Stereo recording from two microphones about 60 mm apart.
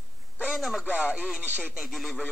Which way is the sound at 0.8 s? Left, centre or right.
Centre.